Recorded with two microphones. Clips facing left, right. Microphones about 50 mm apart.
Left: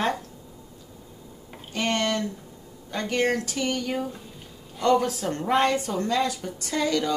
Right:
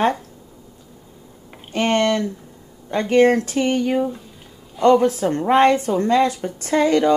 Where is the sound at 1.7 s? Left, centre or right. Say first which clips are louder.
Right 7 dB; right.